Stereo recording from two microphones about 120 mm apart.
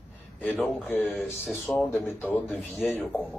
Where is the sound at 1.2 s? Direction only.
20° left (ahead or behind).